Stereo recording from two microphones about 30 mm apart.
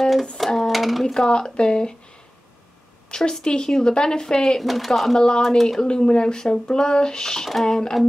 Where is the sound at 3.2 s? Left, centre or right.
Left.